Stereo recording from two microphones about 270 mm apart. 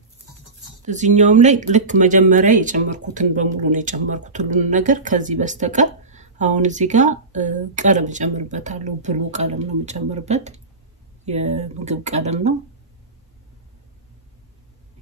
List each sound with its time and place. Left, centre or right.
0.8 s speech: right